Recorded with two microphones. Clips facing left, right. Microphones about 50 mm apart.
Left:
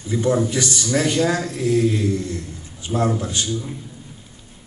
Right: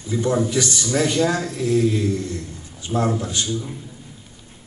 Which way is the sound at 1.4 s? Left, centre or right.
Left.